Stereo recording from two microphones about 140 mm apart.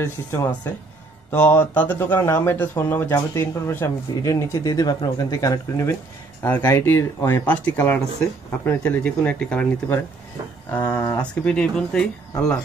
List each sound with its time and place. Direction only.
0.0 s speech: 20° left (ahead or behind)
10.7 s speech: 15° left (ahead or behind)
11.0 s speech: 25° left (ahead or behind)
11.4 s speech: 5° left (ahead or behind)